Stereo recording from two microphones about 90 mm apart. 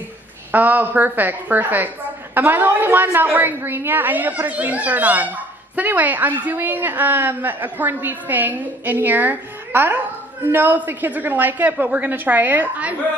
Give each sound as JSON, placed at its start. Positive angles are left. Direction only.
{"t": 0.5, "sound": "a woman's voice", "side_deg": -20}